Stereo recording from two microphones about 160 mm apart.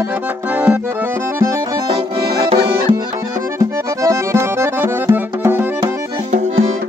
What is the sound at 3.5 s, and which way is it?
Accordion, 20° right (ahead or behind).